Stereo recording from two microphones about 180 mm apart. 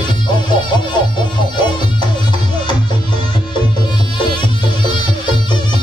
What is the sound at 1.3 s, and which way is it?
Music, 25° left (ahead or behind).